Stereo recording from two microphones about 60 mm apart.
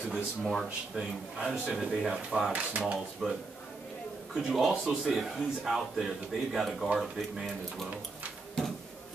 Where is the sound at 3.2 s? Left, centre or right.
Centre.